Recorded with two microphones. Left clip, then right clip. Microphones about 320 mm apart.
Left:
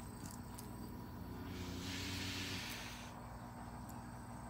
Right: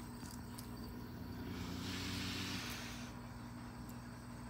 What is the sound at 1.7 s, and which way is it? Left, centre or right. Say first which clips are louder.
Vehicle: even; centre.